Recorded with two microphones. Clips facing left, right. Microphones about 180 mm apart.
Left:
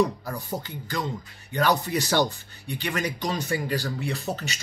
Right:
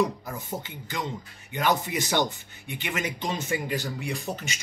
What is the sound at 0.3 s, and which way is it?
Speech, 20° right (ahead or behind).